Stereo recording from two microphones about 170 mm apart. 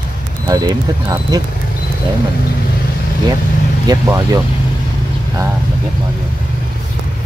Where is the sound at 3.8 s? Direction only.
20° right (ahead or behind).